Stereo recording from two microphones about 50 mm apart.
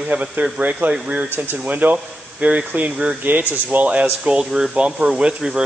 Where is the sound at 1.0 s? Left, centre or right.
Centre.